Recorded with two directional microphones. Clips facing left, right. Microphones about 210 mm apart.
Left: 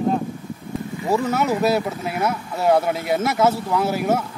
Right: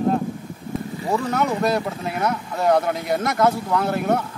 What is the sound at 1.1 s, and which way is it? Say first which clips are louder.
Speech: left 2 dB; 5° left (ahead or behind).